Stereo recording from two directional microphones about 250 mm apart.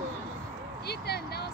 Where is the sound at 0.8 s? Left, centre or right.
Left.